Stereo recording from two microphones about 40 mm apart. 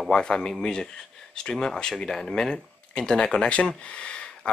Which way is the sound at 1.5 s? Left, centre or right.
Centre.